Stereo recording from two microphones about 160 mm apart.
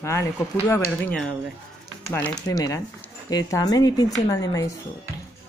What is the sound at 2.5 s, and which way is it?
Speech, 20° left (ahead or behind).